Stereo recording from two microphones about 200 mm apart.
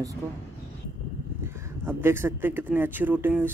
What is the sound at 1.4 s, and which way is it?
Speech, 15° right (ahead or behind).